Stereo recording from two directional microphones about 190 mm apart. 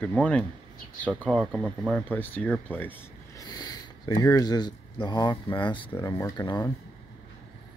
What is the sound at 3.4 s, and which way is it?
Speech, 20° left (ahead or behind).